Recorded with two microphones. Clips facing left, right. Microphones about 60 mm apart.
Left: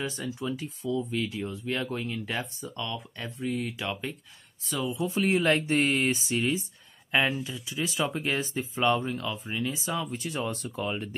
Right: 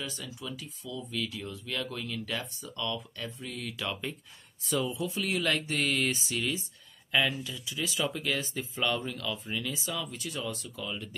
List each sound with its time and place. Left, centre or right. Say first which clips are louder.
0.2 s speech: left 8 dB; left; by 4.1 s centre
4.6 s speech: right 1 dB; centre
5.1 s speech: left 8 dB; left